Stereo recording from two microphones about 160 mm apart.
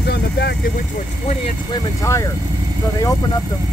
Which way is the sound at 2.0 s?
20° left (ahead or behind).